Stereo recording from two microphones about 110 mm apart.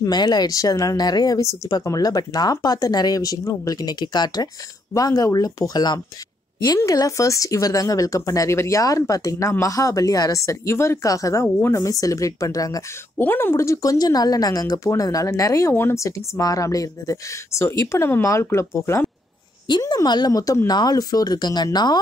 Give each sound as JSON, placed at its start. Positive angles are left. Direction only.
{"t": 0.0, "sound": "speech", "side_deg": 40}
{"t": 13.2, "sound": "speech", "side_deg": 20}
{"t": 19.8, "sound": "speech", "side_deg": 35}